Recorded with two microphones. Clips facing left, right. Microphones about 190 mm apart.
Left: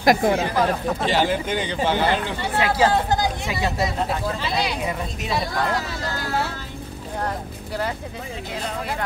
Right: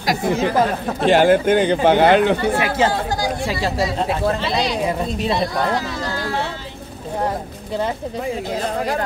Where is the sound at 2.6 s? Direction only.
25° right (ahead or behind).